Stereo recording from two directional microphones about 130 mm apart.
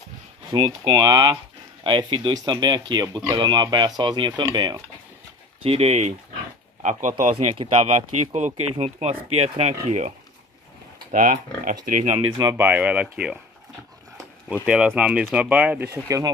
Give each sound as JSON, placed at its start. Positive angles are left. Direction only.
{"t": 0.5, "sound": "speech", "side_deg": -40}
{"t": 5.6, "sound": "speech", "side_deg": -55}
{"t": 6.8, "sound": "speech", "side_deg": -70}
{"t": 7.5, "sound": "speech", "side_deg": -45}
{"t": 11.1, "sound": "speech", "side_deg": -90}
{"t": 12.3, "sound": "speech", "side_deg": -30}
{"t": 12.5, "sound": "speech", "side_deg": -10}
{"t": 14.6, "sound": "speech", "side_deg": -5}
{"t": 15.9, "sound": "speech", "side_deg": -25}